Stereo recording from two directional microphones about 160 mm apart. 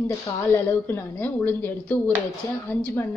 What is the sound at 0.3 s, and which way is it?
A woman's voice, 15° left (ahead or behind).